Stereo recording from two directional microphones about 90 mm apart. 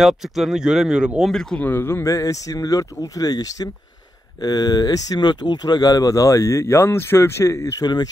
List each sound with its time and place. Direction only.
0.0 s speech: 5° right (ahead or behind)
1.3 s speech: 5° left (ahead or behind)
1.6 s speech: 25° left (ahead or behind)
2.0 s speech: 40° left (ahead or behind)
7.8 s speech: 50° left (ahead or behind)